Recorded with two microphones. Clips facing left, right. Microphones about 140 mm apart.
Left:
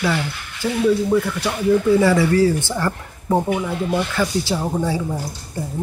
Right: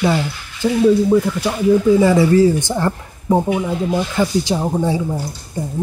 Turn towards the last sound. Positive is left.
turn(degrees=-15)  # may be behind; listen again after turning